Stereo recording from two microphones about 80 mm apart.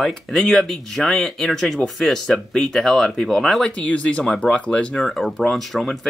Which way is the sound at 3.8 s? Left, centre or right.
Centre.